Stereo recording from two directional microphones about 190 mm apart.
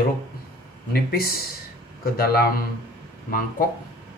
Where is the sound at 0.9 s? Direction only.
55° left (ahead or behind).